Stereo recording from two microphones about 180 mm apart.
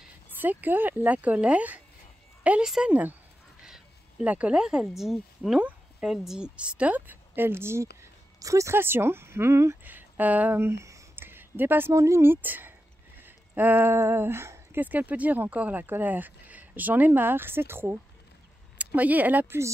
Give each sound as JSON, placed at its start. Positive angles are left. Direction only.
{"t": 0.4, "sound": "speech", "side_deg": -10}